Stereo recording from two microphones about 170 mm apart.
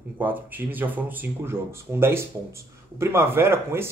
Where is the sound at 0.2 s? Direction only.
10° right (ahead or behind).